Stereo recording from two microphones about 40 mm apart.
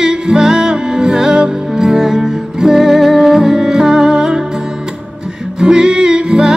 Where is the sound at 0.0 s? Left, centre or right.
Centre.